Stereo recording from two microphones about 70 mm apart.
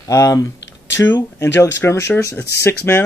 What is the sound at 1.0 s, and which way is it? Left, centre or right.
Speech, left.